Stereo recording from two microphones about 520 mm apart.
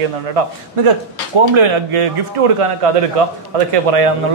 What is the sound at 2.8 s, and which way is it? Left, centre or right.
Speech, right.